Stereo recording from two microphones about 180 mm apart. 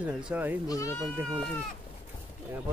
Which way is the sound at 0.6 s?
15° left (ahead or behind).